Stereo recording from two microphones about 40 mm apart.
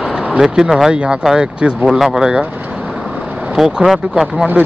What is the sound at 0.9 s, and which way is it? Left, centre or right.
Speech, right.